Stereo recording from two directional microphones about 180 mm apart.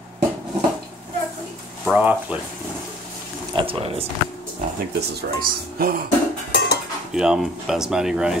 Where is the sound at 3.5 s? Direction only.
30° right (ahead or behind).